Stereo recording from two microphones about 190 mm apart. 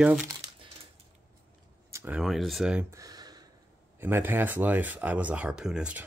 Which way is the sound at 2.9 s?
20° right (ahead or behind).